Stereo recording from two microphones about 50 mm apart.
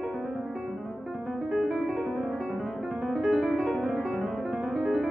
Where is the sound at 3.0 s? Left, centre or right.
Centre.